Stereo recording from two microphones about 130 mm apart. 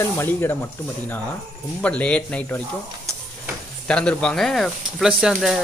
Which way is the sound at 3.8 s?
10° left (ahead or behind).